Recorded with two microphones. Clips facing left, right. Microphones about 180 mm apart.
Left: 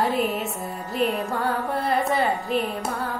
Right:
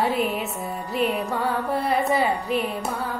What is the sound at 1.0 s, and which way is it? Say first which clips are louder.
Music: even; 45° left (ahead or behind).